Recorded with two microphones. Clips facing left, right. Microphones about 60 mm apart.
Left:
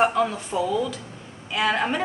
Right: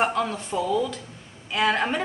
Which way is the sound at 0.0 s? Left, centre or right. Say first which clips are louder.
Left 3 dB; centre.